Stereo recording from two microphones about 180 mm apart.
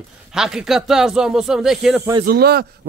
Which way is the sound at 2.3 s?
60° right (ahead or behind).